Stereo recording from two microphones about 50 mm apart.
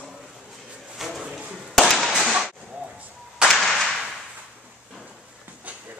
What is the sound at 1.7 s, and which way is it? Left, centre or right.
Firecracker, centre.